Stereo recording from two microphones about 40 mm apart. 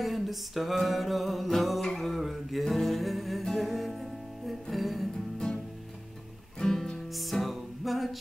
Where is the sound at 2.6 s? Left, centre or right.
Centre.